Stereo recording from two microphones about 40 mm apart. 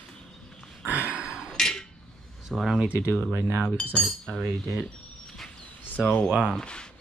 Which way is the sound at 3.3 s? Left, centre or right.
Right.